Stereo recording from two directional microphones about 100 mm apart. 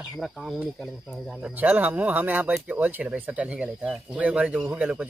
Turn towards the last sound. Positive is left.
turn(degrees=-15)  # may be behind; listen again after turning